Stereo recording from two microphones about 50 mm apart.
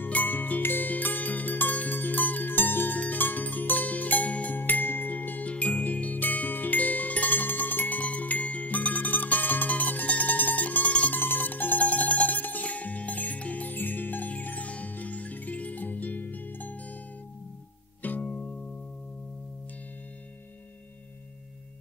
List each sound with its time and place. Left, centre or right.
0.0 s music: left
5.5 s music: left
11.1 s music: left
18.0 s music: left